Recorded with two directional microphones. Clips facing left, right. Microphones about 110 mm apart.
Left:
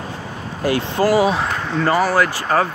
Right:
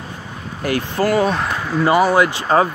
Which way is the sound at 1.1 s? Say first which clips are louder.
Left 1 dB; 5° left (ahead or behind).